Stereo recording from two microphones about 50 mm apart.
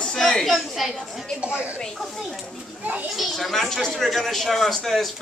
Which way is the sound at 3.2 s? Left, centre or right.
Centre.